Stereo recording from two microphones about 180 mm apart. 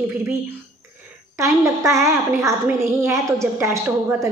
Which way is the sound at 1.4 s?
15° right (ahead or behind).